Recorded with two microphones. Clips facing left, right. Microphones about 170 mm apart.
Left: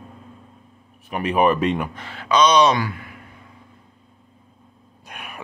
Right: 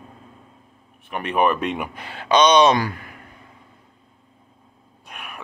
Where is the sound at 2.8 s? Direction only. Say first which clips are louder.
Right 1 dB; 45° right (ahead or behind).